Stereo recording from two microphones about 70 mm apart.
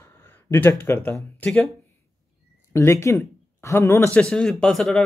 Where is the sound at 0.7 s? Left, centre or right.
Left.